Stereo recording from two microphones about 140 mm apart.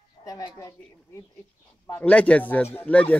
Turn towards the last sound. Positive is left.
turn(degrees=10)  # may be behind; listen again after turning